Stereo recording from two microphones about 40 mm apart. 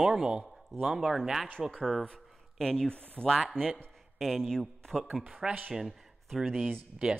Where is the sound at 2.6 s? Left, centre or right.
Centre.